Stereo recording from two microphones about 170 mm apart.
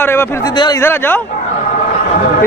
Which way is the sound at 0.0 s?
15° left (ahead or behind).